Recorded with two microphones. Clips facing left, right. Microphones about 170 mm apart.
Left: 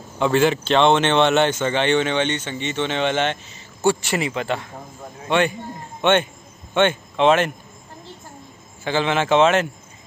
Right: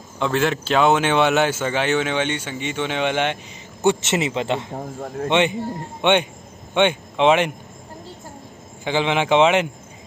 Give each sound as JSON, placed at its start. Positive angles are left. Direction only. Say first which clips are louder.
{"t": 0.2, "sound": "speech", "louder": "left 3 dB", "side_deg": 0}
{"t": 3.8, "sound": "a man's voice", "louder": "right 1 dB", "side_deg": -20}
{"t": 5.0, "sound": "a man's voice", "louder": "right 10 dB", "side_deg": -60}
{"t": 5.3, "sound": "speech", "louder": "even", "side_deg": -20}
{"t": 8.8, "sound": "speech", "louder": "even", "side_deg": -15}